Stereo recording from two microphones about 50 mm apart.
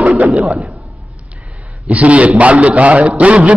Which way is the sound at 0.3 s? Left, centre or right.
Centre.